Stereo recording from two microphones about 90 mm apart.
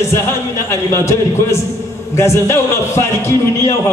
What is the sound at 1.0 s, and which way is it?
A man's voice, 30° left (ahead or behind).